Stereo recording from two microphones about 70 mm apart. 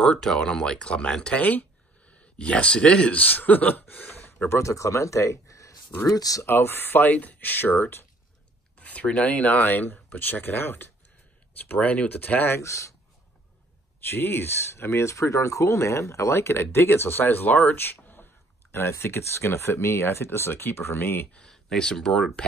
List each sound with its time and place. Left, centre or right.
0.0 s speech: centre
1.4 s speech: left
4.6 s speech: left
6.0 s speech: left
6.4 s speech: left
8.7 s speech: centre
12.5 s speech: left
14.1 s speech: left
21.3 s speech: centre